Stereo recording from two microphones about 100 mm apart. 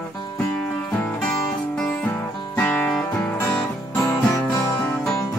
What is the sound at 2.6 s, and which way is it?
Music, 15° left (ahead or behind).